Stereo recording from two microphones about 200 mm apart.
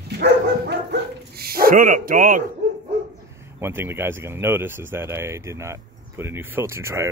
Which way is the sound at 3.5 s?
10° right (ahead or behind).